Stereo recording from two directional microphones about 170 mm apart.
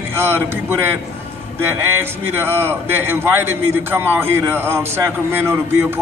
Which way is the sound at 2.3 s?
15° right (ahead or behind).